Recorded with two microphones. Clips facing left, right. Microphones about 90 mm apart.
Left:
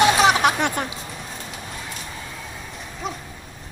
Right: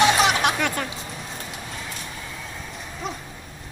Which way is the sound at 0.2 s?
35° left (ahead or behind).